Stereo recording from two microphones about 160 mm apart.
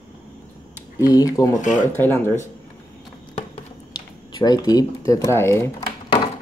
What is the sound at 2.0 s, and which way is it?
Speech, 15° left (ahead or behind).